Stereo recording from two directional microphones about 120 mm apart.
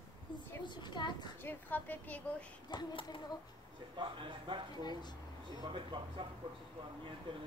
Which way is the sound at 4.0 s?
45° right (ahead or behind).